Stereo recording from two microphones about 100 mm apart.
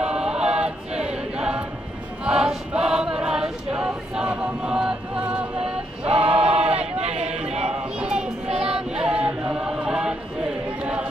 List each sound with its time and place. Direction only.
0.0 s choir: 10° right (ahead or behind)
6.0 s choir: 80° right
8.5 s choir: 10° right (ahead or behind)
10.8 s a sound: 10° right (ahead or behind)